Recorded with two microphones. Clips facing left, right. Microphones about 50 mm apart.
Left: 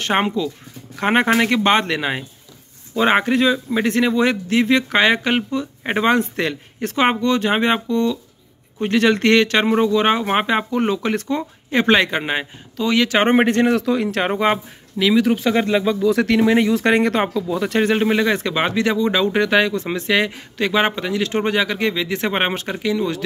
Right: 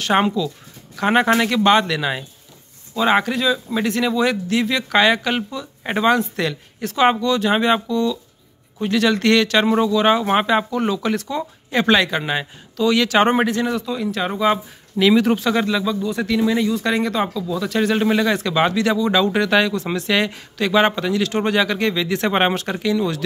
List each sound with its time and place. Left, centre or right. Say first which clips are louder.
0.0 s speech: right 1 dB; left
13.3 s speech: left 4 dB; left
13.7 s speech: left 4 dB; left
15.0 s speech: right 1 dB; centre
15.6 s speech: left 2 dB; left
16.0 s speech: left 4 dB; left
16.8 s speech: left 3 dB; left
18.0 s speech: even; centre